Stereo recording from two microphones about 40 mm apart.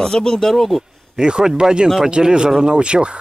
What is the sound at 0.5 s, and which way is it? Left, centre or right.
Speech, centre.